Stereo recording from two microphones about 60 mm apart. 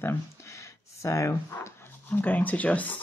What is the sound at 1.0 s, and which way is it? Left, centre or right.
Speech, left.